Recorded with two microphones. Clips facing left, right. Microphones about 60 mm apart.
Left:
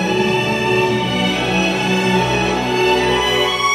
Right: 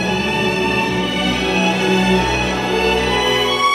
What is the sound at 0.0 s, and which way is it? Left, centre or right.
Music, centre.